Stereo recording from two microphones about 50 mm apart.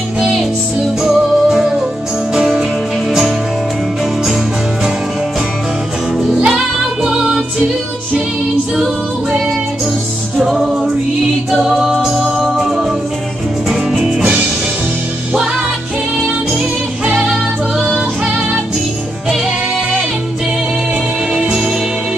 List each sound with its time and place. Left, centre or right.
0.7 s music: centre
6.2 s music: centre
10.4 s music: centre
17.0 s music: right